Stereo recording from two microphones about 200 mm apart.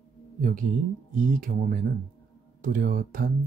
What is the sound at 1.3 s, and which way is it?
Speech, 40° right (ahead or behind).